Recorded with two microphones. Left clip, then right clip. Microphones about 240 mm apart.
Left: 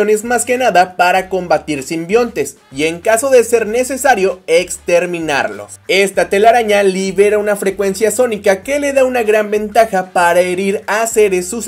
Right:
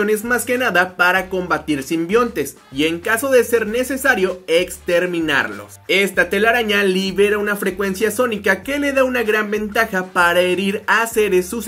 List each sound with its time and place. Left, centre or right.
0.0 s speech: centre
8.0 s speech: centre